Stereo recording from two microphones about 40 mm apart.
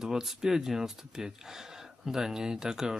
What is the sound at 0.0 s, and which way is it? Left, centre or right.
Speech, centre.